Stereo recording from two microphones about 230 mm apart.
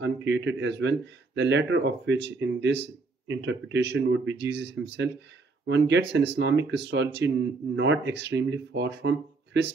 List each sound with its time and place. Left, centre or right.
0.0 s speech: right